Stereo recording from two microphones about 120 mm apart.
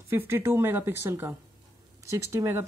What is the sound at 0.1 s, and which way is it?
Speech, 20° right (ahead or behind).